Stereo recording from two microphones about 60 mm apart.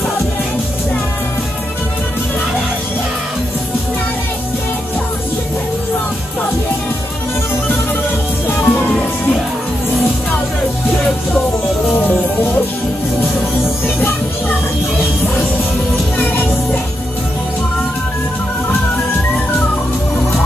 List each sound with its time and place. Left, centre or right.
8.5 s music: left
11.9 s music: left
15.0 s music: left